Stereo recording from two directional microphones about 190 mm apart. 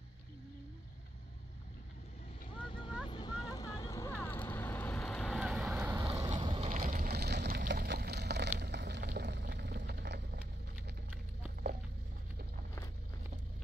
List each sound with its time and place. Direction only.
2.5 s vehicle: 25° left (ahead or behind); by 5.9 s 5° right (ahead or behind)
5.9 s boat: 20° right (ahead or behind)
6.7 s a sound: 45° right (ahead or behind); by 10.4 s 60° right (ahead or behind)